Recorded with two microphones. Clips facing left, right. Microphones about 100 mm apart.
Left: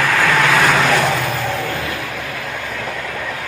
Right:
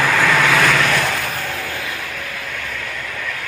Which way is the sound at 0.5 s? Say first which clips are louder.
Left 2 dB; 15° left (ahead or behind).